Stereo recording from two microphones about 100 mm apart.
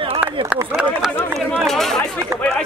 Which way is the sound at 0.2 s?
15° right (ahead or behind).